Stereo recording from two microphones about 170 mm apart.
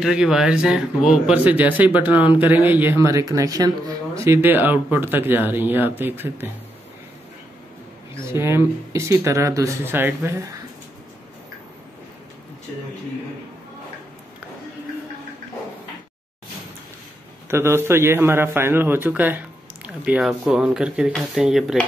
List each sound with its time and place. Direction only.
0.0 s speech: 5° right (ahead or behind)
8.2 s speech: 15° right (ahead or behind)
17.5 s speech: 15° right (ahead or behind)